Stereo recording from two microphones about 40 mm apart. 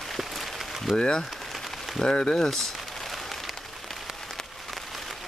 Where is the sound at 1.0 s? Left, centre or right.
Left.